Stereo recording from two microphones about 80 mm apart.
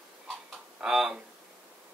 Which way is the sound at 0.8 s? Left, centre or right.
Centre.